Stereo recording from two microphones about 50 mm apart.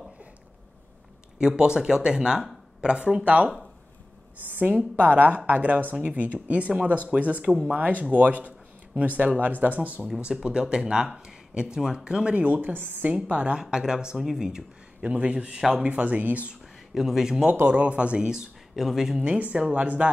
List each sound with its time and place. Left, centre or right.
1.4 s speech: centre
3.3 s a man's voice: right
10.2 s speech: centre
12.4 s a woman's voice: right
13.1 s a woman's voice: right
16.9 s speech: centre
17.6 s a man's voice: right
18.8 s speech: centre
19.2 s a man's voice: right